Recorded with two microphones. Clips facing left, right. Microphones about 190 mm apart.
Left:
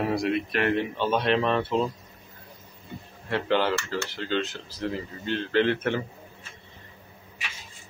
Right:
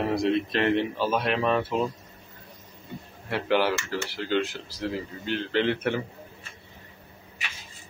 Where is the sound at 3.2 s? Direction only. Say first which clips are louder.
Even; 10° right (ahead or behind).